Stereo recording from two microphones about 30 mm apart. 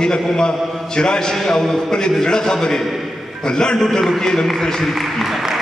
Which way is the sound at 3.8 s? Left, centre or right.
Centre.